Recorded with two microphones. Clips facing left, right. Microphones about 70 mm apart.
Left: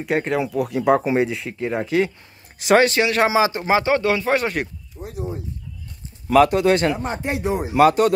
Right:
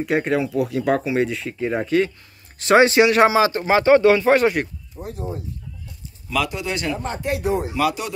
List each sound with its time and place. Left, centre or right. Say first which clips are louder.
0.0 s speech: right 1 dB; centre
0.7 s speech: left 4 dB; centre
3.0 s speech: right 4 dB; centre
3.3 s speech: right 1 dB; centre
3.9 s speech: right 5 dB; centre
5.0 s speech: right 2 dB; right
6.2 s speech: left 10 dB; left
7.0 s speech: even; left
7.7 s speech: left 8 dB; left